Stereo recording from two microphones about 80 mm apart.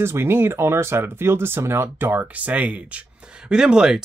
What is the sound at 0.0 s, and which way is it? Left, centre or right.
Speech, right.